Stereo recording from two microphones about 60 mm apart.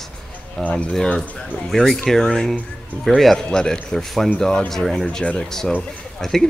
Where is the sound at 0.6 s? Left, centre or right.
Left.